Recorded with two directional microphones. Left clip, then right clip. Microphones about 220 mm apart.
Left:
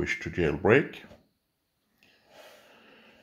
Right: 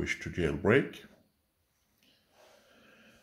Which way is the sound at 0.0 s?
Centre (ahead or behind).